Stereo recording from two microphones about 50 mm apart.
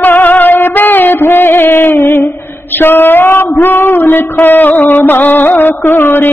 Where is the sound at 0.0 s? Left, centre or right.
Left.